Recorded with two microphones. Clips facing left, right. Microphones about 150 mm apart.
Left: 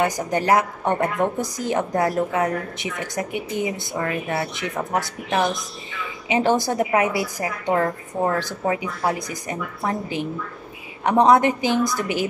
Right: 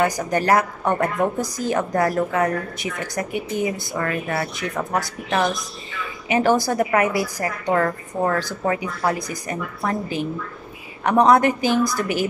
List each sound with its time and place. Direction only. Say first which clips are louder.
0.0 s a woman's voice: right 1 dB; 20° left (ahead or behind)